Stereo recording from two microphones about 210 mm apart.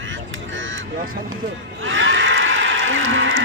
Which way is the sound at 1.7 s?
65° right (ahead or behind).